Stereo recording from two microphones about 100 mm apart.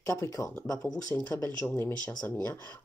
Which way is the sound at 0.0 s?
30° left (ahead or behind).